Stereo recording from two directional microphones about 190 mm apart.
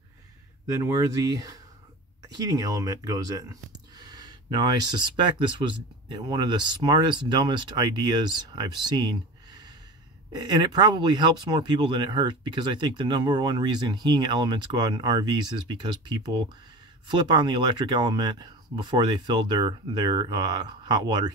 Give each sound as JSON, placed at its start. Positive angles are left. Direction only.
{"t": 0.7, "sound": "speech", "side_deg": -20}